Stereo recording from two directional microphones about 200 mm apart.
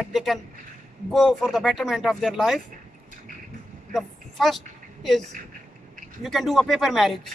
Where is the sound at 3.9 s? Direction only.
Centre (ahead or behind).